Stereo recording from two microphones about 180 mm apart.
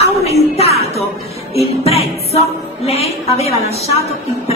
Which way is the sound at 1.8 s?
35° left (ahead or behind).